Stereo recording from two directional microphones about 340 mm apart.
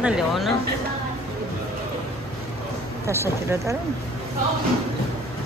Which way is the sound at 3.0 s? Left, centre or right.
Centre.